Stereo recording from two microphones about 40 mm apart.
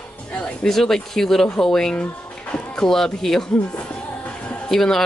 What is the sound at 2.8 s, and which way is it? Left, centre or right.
Speech, centre.